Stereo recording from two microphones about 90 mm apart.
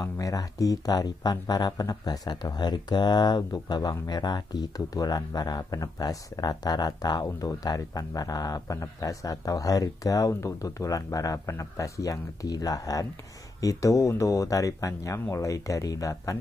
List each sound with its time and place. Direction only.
0.0 s speech: 40° left (ahead or behind)